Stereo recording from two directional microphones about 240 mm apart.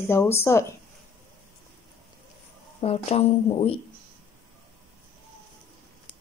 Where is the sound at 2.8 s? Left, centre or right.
Left.